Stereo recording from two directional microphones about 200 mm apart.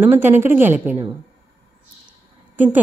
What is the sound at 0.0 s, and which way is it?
A woman's voice, 10° right (ahead or behind).